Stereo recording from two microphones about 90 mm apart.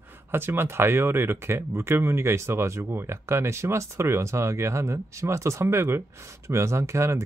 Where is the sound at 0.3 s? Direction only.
25° right (ahead or behind).